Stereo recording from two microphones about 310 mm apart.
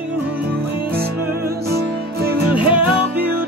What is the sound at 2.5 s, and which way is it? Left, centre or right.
Music, centre.